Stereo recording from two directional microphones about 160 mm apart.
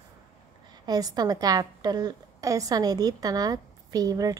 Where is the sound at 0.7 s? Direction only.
25° right (ahead or behind).